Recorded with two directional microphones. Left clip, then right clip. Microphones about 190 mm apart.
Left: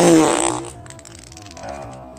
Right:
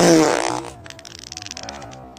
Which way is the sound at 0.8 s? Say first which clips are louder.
Right 3 dB; 15° right (ahead or behind).